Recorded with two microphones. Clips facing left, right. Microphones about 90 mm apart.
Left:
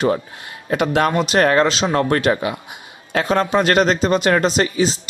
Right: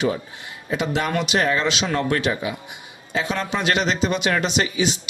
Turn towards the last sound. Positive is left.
turn(degrees=40)  # may be behind; listen again after turning